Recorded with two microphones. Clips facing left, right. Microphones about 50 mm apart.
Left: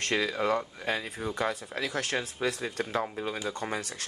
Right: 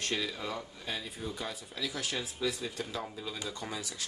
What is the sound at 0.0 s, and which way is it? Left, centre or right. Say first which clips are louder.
Speech: left 7 dB; left.